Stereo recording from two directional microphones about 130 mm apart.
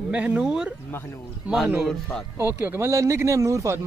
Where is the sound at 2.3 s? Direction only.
20° right (ahead or behind).